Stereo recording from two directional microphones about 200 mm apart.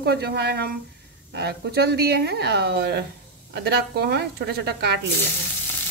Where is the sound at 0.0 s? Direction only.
55° right (ahead or behind).